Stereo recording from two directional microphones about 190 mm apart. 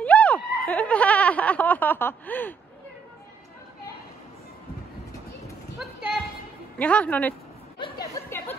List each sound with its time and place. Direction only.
0.0 s snicker: 5° left (ahead or behind)
5.8 s a sound: centre (ahead or behind)
6.8 s speech: 5° left (ahead or behind)
8.2 s chatter: 15° left (ahead or behind)